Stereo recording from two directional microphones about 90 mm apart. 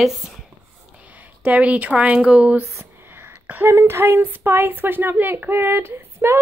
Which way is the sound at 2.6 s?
30° right (ahead or behind).